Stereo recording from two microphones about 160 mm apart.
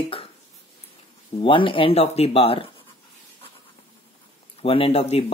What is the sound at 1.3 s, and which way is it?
Speech, 30° left (ahead or behind).